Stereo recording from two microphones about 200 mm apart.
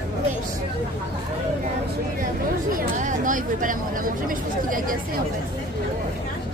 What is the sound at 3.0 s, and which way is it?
Speech, 40° right (ahead or behind).